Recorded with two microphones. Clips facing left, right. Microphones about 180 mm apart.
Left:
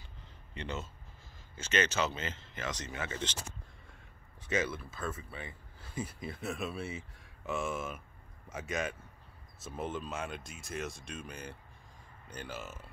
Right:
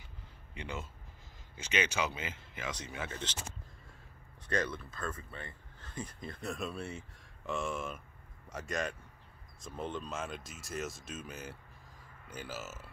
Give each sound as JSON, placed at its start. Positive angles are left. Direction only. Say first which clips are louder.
{"t": 0.6, "sound": "speech", "louder": "left 2 dB", "side_deg": -10}
{"t": 3.0, "sound": "speech", "louder": "left 4 dB", "side_deg": 0}
{"t": 4.4, "sound": "speech", "louder": "left 1 dB", "side_deg": 5}